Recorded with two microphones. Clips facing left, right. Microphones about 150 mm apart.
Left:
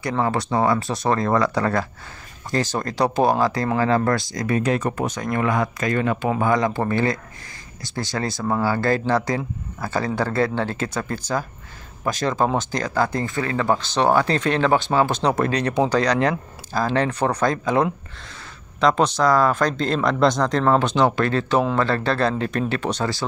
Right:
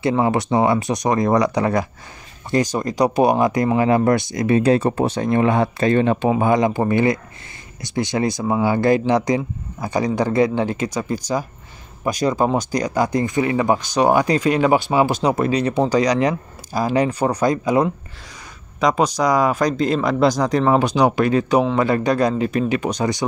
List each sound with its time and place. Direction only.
0.0 s speech: 20° right (ahead or behind)